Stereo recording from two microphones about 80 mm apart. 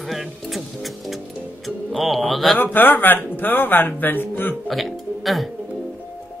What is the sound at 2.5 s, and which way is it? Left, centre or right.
Speech, left.